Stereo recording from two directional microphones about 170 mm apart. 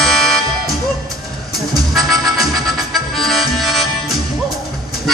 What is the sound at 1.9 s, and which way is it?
Music, centre (ahead or behind).